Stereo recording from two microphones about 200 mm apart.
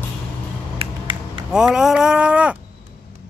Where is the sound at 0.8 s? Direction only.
25° right (ahead or behind).